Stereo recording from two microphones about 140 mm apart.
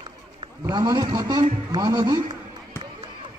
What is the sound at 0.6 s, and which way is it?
A man's voice, 30° right (ahead or behind).